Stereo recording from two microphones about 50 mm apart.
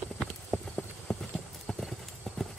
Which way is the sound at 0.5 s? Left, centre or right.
Centre.